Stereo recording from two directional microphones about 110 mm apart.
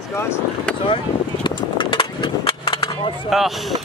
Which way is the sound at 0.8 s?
50° left (ahead or behind).